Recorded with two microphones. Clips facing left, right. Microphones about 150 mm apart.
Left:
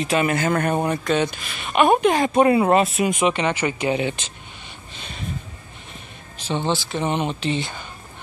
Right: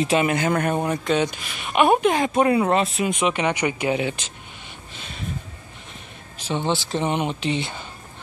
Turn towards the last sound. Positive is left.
turn(degrees=-25)  # may be behind; listen again after turning